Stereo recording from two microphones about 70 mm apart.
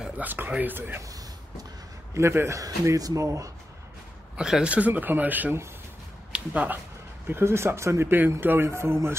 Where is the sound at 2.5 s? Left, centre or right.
Right.